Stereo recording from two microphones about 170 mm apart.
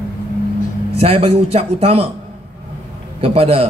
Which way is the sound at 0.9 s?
35° right (ahead or behind).